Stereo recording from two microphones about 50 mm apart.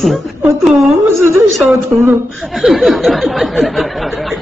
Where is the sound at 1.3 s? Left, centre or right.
Right.